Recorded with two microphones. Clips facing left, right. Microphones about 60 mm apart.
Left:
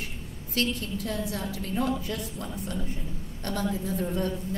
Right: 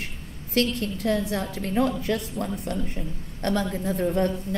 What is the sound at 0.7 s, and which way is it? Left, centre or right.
A woman's voice, right.